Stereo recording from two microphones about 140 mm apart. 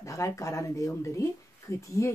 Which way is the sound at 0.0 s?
20° left (ahead or behind).